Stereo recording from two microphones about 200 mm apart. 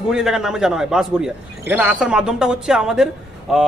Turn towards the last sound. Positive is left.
turn(degrees=0)  # may be behind; listen again after turning